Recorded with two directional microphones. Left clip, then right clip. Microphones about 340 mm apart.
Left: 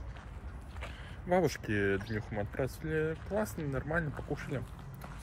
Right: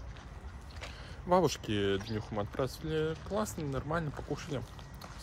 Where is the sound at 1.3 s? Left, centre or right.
Centre.